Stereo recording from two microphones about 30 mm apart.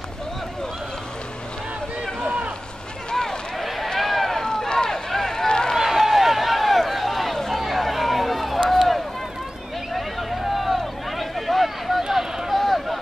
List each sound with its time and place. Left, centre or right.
2.2 s run: right
3.1 s run: left
3.5 s run: centre
4.4 s run: left
5.8 s run: centre
7.4 s a sound: centre
8.6 s run: centre
9.9 s a sound: centre
12.5 s a sound: centre